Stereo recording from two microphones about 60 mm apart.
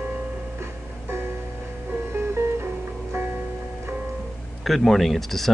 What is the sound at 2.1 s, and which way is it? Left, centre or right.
Music, right.